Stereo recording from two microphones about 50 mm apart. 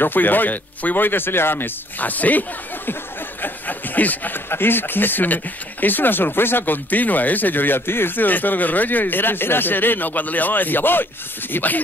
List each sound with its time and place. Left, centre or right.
0.0 s speech: left
3.4 s a sound: left
4.5 s speech: left